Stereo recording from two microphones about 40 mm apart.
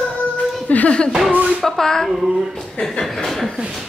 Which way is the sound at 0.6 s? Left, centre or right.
Left.